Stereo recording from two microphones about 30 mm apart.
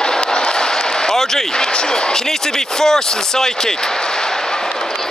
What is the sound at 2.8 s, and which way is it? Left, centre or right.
Speech, centre.